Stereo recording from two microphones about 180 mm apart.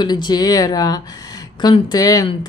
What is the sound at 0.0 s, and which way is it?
Speech, 25° left (ahead or behind).